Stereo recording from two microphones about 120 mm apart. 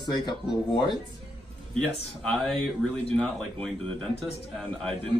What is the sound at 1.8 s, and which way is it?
Speech, 5° left (ahead or behind).